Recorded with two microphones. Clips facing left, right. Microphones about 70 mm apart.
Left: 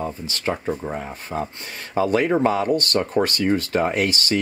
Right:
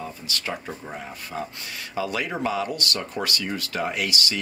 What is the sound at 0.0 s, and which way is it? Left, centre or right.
Speech, left.